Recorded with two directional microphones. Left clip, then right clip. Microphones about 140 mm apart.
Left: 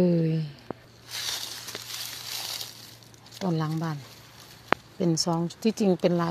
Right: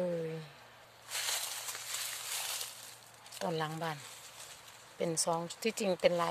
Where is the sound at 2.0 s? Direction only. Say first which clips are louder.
Left 4 dB; 75° left (ahead or behind).